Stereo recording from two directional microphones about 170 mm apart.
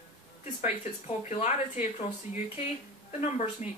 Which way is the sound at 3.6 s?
40° left (ahead or behind).